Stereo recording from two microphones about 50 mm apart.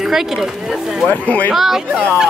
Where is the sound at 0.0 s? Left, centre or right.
Centre.